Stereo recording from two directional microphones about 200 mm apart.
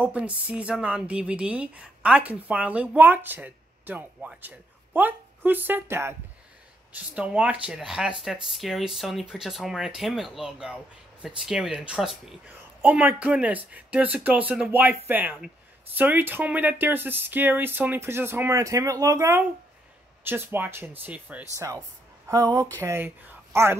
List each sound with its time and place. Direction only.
0.0 s speech: 5° right (ahead or behind)